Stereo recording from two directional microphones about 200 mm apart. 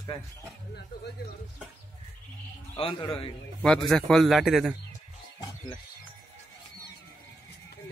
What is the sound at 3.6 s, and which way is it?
Speech, 5° left (ahead or behind).